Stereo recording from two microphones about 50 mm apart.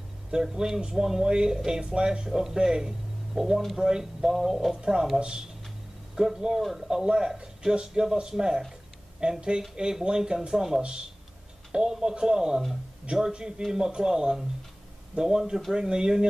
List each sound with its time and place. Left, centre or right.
0.3 s speech: centre